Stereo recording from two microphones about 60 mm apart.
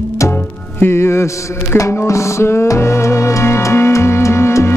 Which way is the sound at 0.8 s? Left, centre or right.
Left.